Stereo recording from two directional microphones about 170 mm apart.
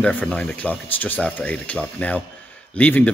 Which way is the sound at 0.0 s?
5° left (ahead or behind).